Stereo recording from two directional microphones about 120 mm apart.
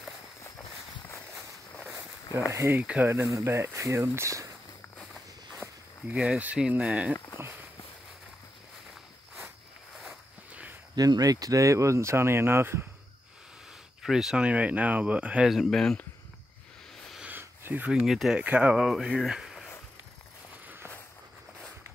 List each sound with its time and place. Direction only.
2.5 s speech: 20° right (ahead or behind)
2.8 s speech: 10° right (ahead or behind)
3.1 s speech: 25° right (ahead or behind)
6.1 s speech: 10° right (ahead or behind)
7.3 s walk: 20° right (ahead or behind)
9.9 s a sound: 10° right (ahead or behind)
11.0 s speech: 30° right (ahead or behind)
14.0 s speech: 5° right (ahead or behind)
16.9 s a sound: 5° left (ahead or behind)
17.2 s a sound: 15° right (ahead or behind)
18.4 s speech: 10° right (ahead or behind)
20.6 s walk: 15° right (ahead or behind)